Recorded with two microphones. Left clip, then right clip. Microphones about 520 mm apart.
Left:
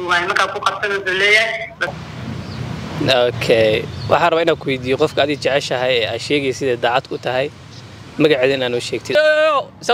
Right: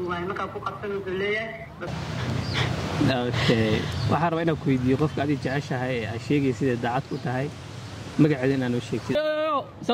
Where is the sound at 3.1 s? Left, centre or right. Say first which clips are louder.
Left 13 dB; left.